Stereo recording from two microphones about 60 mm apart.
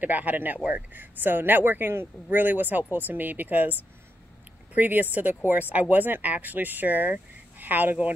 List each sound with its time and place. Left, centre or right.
0.0 s speech: right
4.7 s speech: right